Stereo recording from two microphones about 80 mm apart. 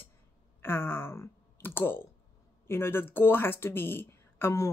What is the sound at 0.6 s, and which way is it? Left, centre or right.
Speech, left.